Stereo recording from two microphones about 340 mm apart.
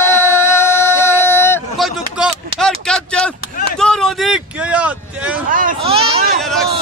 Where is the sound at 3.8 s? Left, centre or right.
Centre.